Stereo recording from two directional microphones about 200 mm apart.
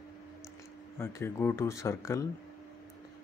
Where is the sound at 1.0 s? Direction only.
10° left (ahead or behind).